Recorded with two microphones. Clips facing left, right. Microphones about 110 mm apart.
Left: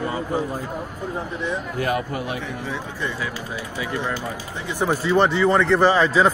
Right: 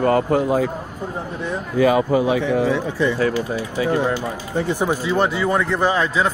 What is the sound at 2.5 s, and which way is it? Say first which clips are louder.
Speech: right 11 dB; 90° right.